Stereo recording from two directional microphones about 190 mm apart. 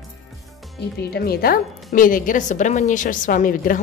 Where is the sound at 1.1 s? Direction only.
55° left (ahead or behind).